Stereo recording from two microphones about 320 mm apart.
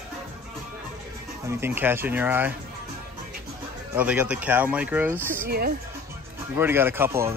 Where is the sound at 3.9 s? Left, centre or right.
Centre.